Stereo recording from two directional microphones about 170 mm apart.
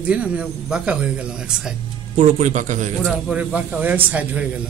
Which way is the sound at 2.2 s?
45° right (ahead or behind).